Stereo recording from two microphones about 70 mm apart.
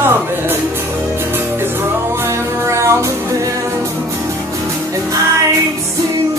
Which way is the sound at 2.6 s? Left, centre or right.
Right.